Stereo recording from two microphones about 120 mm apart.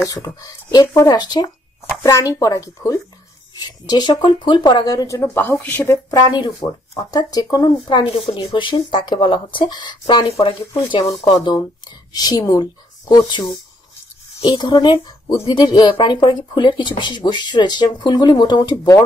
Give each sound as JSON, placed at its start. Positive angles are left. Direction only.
{"t": 0.1, "sound": "speech", "side_deg": 30}
{"t": 6.0, "sound": "speech", "side_deg": 35}
{"t": 7.7, "sound": "speech", "side_deg": 45}
{"t": 14.4, "sound": "speech", "side_deg": 35}